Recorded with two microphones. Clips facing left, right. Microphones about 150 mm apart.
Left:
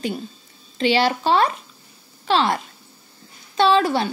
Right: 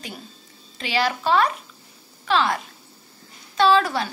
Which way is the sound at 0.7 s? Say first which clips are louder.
Left 5 dB; 30° left (ahead or behind).